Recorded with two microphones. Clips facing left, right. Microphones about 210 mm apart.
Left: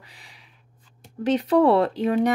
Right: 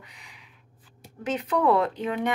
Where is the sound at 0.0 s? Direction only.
35° left (ahead or behind).